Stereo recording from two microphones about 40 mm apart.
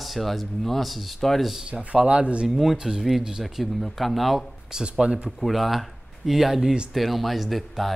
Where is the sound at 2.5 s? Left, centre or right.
Centre.